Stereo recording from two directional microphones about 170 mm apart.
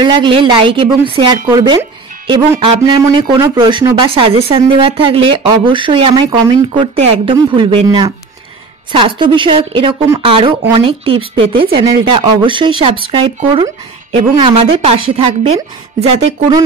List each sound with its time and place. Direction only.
0.0 s speech: 30° right (ahead or behind)